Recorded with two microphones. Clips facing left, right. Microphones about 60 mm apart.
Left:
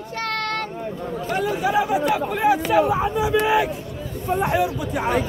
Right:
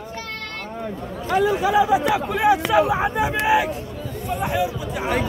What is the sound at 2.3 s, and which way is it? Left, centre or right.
Speech, right.